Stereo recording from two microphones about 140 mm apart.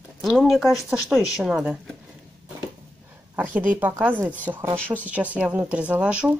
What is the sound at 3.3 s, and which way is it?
Speech, 10° right (ahead or behind).